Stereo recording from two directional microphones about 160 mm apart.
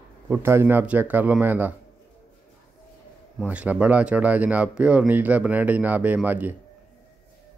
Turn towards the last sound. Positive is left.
turn(degrees=-10)  # may be behind; listen again after turning